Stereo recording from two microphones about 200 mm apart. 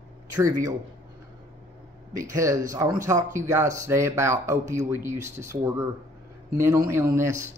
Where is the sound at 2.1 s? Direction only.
15° right (ahead or behind).